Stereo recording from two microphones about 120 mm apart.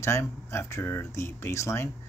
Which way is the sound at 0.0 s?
20° left (ahead or behind).